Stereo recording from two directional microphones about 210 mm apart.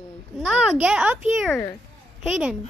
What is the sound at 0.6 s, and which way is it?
A child's voice, 5° right (ahead or behind).